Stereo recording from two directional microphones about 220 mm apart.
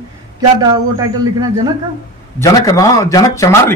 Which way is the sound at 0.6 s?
15° right (ahead or behind).